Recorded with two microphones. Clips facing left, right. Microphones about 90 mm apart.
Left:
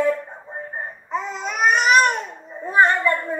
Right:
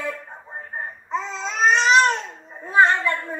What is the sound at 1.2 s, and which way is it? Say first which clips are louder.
Babbling: left 1 dB; 15° left (ahead or behind).